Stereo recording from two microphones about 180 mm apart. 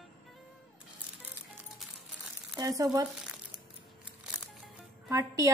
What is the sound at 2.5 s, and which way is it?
Speech, 20° right (ahead or behind).